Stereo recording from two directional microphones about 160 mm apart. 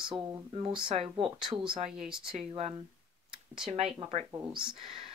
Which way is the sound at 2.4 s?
40° right (ahead or behind).